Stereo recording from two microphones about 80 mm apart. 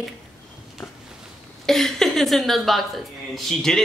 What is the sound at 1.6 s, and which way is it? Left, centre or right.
A woman's voice, centre.